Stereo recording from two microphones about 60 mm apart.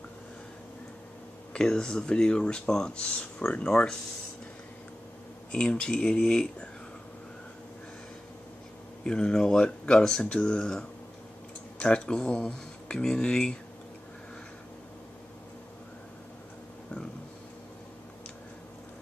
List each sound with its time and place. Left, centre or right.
1.5 s speech: centre
5.5 s speech: centre
9.0 s speech: centre